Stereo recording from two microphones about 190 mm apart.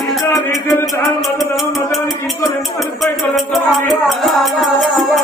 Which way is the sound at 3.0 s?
Centre (ahead or behind).